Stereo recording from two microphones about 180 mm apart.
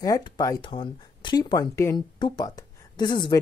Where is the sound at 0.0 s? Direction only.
20° left (ahead or behind).